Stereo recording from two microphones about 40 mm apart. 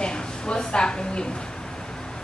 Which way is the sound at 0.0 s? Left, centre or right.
Left.